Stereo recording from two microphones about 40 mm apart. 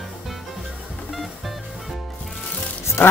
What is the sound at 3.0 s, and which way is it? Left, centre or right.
Music, left.